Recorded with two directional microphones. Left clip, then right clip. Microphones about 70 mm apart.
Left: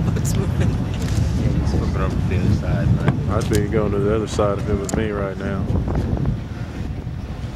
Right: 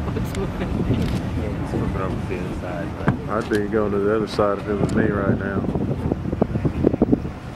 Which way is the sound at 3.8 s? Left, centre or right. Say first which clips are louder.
Even; centre.